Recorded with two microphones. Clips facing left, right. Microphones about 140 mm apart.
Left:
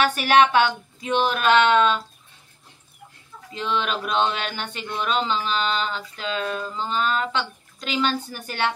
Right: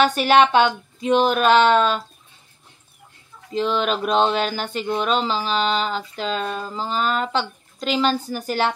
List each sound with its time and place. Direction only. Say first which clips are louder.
0.1 s a woman's voice: right 2 dB; 30° right (ahead or behind)
3.5 s speech: right 5 dB; 35° right (ahead or behind)
8.2 s a woman's voice: right 7 dB; centre (ahead or behind)